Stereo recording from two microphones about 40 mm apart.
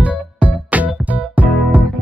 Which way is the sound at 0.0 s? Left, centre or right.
Right.